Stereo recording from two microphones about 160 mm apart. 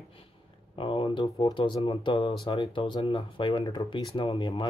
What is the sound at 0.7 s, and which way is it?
Speech, 30° left (ahead or behind).